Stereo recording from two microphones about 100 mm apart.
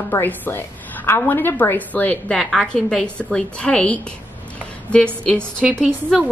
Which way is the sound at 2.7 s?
10° left (ahead or behind).